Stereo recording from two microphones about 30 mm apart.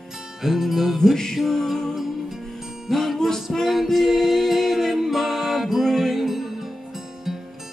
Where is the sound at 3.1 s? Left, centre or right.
Centre.